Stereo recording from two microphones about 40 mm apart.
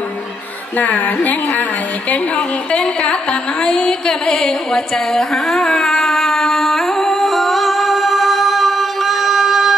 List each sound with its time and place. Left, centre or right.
0.7 s a woman's voice: left
3.0 s music: left; by 9.8 s centre